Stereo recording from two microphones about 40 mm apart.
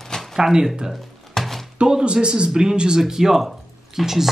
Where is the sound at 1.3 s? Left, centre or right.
Centre.